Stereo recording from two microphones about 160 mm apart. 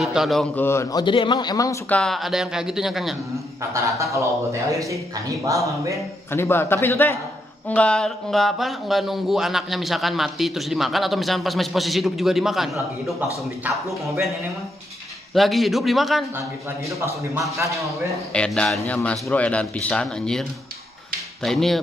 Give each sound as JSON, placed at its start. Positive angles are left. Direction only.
{"t": 0.0, "sound": "speech", "side_deg": 0}
{"t": 0.6, "sound": "a man's voice", "side_deg": 15}
{"t": 1.0, "sound": "a man's voice", "side_deg": 30}
{"t": 1.9, "sound": "speech", "side_deg": 5}
{"t": 3.7, "sound": "a man's voice", "side_deg": -20}
{"t": 6.3, "sound": "a man's voice", "side_deg": 15}
{"t": 15.3, "sound": "speech", "side_deg": 0}
{"t": 17.0, "sound": "a man's voice", "side_deg": -20}
{"t": 18.3, "sound": "a man's voice", "side_deg": 5}